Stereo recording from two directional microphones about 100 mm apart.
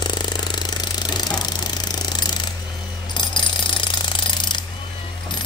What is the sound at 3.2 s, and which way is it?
Jackhammer, 50° left (ahead or behind).